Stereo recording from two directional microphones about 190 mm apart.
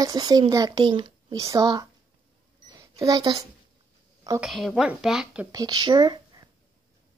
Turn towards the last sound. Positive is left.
turn(degrees=-20)  # may be behind; listen again after turning